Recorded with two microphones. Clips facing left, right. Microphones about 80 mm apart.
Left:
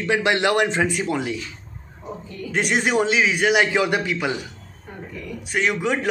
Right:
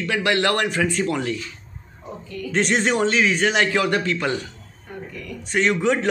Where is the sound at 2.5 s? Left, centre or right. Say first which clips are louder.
Even; centre.